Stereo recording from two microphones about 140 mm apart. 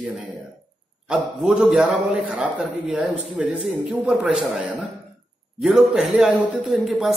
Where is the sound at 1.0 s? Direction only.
5° right (ahead or behind).